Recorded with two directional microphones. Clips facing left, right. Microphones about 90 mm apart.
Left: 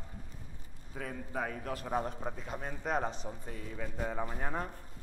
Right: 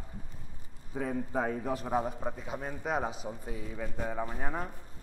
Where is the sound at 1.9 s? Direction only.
5° right (ahead or behind).